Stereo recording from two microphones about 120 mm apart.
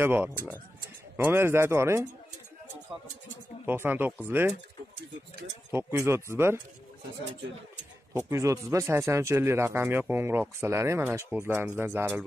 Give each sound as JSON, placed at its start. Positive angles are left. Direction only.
{"t": 0.0, "sound": "speech", "side_deg": -15}
{"t": 3.6, "sound": "speech", "side_deg": -15}
{"t": 5.7, "sound": "speech", "side_deg": -20}
{"t": 8.1, "sound": "speech", "side_deg": -25}